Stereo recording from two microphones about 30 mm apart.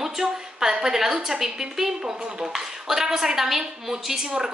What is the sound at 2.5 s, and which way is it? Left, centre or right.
A woman's voice, centre.